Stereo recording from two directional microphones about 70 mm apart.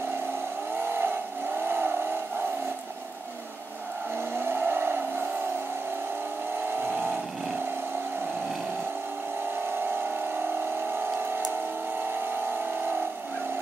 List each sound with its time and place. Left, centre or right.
0.8 s vehicle: right
4.4 s vehicle: right
6.7 s vehicle: right
11.0 s a sound: right